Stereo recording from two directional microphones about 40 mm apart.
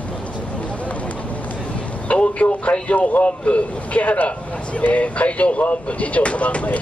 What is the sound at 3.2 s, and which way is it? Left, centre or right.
Speech, left.